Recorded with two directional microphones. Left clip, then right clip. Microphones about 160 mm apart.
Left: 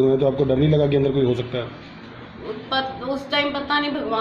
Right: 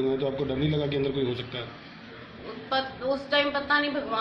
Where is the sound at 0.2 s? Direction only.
55° left (ahead or behind).